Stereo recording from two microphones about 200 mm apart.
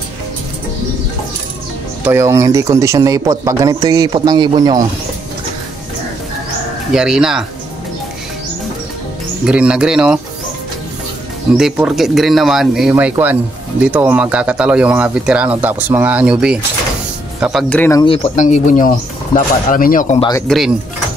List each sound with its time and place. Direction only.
2.0 s speech: 15° right (ahead or behind)
6.9 s speech: 5° right (ahead or behind)
9.5 s speech: 5° right (ahead or behind)
11.5 s speech: centre (ahead or behind)
18.0 s speech: 30° left (ahead or behind)
20.2 s speech: 20° left (ahead or behind)
20.4 s speech: centre (ahead or behind)